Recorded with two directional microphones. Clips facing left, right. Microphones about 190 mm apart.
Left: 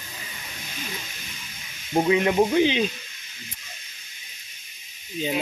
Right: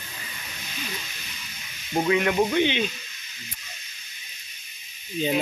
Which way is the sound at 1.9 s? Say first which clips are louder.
Left 2 dB; 25° left (ahead or behind).